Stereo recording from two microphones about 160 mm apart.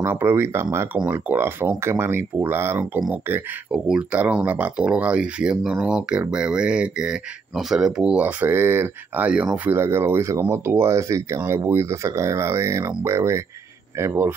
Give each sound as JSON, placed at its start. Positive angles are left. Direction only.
{"t": 0.0, "sound": "speech", "side_deg": -15}